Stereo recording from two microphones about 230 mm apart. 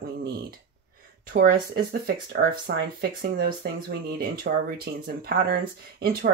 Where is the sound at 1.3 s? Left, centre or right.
Right.